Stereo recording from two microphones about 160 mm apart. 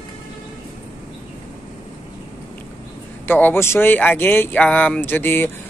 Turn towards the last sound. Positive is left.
turn(degrees=15)  # may be behind; listen again after turning